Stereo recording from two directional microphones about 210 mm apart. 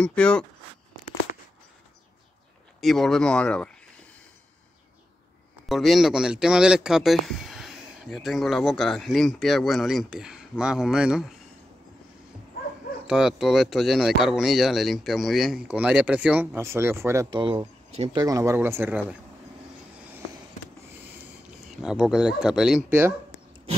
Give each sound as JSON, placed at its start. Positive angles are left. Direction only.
{"t": 0.0, "sound": "speech", "side_deg": 5}
{"t": 1.3, "sound": "a sound", "side_deg": 45}
{"t": 2.8, "sound": "speech", "side_deg": 0}
{"t": 5.7, "sound": "speech", "side_deg": 0}
{"t": 13.0, "sound": "speech", "side_deg": -5}
{"t": 18.2, "sound": "speech", "side_deg": -15}
{"t": 21.8, "sound": "speech", "side_deg": -5}